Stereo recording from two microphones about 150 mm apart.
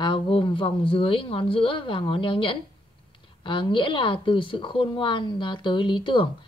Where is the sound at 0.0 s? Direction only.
35° left (ahead or behind).